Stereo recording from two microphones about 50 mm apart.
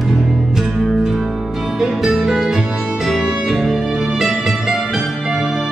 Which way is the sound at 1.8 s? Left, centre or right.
Centre.